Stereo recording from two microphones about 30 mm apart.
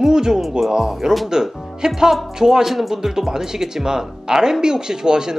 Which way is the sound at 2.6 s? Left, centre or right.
Centre.